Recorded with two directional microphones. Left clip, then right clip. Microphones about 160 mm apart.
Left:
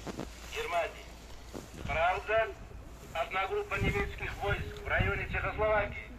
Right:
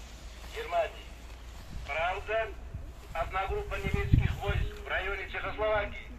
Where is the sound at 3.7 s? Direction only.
55° right (ahead or behind).